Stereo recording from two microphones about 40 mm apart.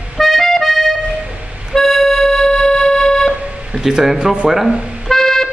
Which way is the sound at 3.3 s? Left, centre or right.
Right.